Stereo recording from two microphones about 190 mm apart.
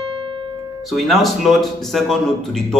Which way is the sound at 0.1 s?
25° right (ahead or behind).